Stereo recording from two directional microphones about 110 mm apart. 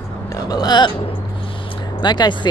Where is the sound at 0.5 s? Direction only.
40° left (ahead or behind).